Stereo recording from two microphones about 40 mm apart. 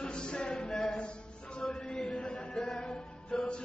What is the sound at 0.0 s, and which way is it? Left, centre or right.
Music, left.